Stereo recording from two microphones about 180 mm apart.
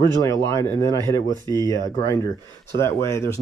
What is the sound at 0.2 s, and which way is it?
Speech, 20° left (ahead or behind).